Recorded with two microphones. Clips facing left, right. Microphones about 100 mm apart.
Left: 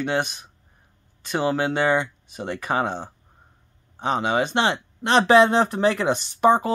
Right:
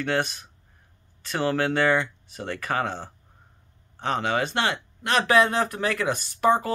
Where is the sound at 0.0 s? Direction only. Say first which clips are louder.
Left 1 dB; 20° left (ahead or behind).